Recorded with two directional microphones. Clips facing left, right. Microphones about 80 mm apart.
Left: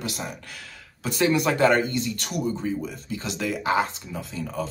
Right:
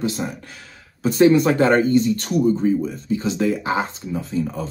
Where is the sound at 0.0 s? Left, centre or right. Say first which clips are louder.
Right 8 dB; right.